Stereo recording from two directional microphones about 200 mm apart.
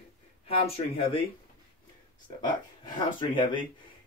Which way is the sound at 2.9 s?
25° left (ahead or behind).